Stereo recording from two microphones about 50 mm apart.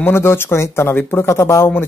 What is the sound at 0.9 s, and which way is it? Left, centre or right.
Speech, left.